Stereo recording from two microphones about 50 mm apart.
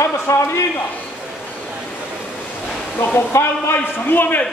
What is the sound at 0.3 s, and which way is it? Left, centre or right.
Speech, left.